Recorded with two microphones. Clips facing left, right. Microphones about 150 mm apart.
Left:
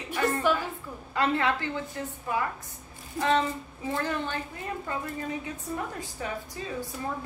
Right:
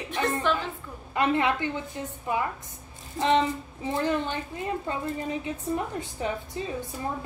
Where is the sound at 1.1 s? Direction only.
20° right (ahead or behind).